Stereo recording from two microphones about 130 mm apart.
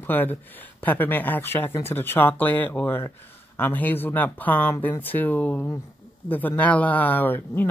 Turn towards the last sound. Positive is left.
turn(degrees=15)  # may be behind; listen again after turning